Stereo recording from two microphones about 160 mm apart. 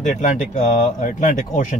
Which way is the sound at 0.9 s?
50° left (ahead or behind).